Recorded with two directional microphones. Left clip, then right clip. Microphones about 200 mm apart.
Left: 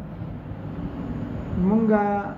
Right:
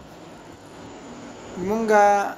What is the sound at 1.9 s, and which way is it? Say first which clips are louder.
Speech: right 9 dB; 65° right (ahead or behind).